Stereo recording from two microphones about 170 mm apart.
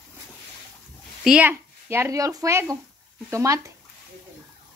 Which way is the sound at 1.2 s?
5° right (ahead or behind).